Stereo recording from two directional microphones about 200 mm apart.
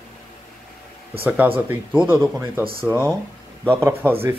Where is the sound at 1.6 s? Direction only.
10° right (ahead or behind).